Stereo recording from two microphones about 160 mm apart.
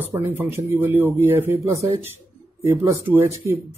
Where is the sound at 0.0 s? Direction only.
10° right (ahead or behind).